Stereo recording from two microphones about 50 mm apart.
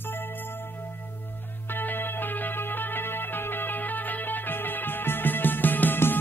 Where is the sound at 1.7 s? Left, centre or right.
Left.